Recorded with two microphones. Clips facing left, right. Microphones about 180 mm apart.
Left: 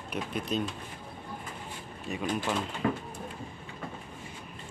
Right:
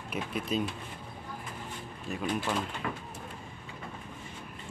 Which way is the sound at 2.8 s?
40° left (ahead or behind).